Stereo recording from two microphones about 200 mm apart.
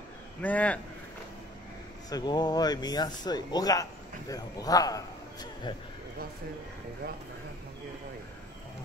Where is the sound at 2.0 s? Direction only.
20° left (ahead or behind).